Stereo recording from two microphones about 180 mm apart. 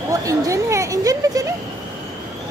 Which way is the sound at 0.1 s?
15° right (ahead or behind).